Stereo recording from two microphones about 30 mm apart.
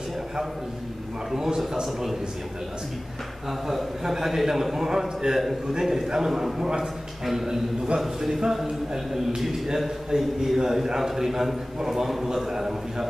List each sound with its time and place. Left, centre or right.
1.3 s a man's voice: centre
3.6 s a man's voice: centre
8.0 s a man's voice: centre